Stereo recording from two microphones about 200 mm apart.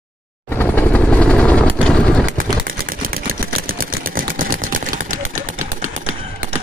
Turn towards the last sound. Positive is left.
turn(degrees=-40)  # may be behind; listen again after turning